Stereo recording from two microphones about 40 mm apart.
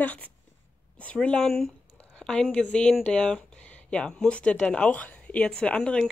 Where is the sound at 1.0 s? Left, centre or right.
Left.